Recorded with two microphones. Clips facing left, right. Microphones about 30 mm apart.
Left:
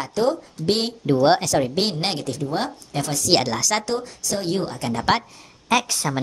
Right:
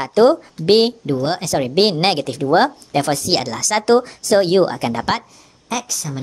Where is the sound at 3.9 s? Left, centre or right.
Right.